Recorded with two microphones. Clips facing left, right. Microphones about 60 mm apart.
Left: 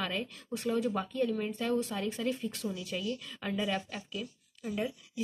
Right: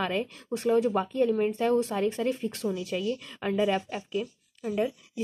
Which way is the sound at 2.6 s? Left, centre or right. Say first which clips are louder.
Right 6 dB; right.